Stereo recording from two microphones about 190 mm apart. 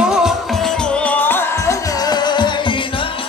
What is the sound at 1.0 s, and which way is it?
Music, 10° left (ahead or behind).